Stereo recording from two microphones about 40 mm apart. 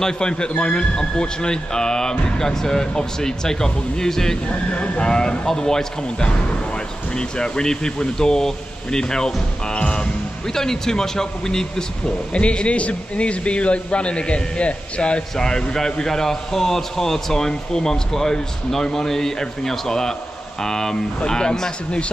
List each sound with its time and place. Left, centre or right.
0.0 s a man's voice: left
4.5 s a man's voice: left
5.0 s a man's voice: centre
9.8 s music: left
10.5 s a man's voice: centre
12.4 s a man's voice: left
15.3 s a man's voice: centre